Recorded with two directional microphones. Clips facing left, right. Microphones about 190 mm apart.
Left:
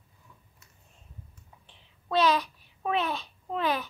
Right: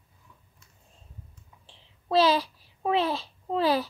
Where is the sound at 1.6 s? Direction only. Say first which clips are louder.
Right 6 dB; 30° right (ahead or behind).